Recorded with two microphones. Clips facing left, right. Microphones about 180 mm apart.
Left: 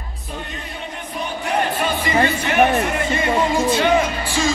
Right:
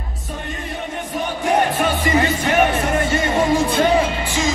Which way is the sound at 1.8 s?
45° right (ahead or behind).